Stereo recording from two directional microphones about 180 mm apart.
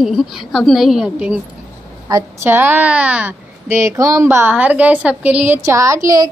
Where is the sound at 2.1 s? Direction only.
15° right (ahead or behind).